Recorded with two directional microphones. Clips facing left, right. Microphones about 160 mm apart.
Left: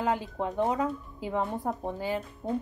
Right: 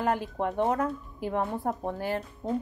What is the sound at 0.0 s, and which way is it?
A woman's voice, 20° left (ahead or behind).